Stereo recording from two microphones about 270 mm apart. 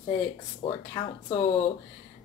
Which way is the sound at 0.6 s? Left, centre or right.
Centre.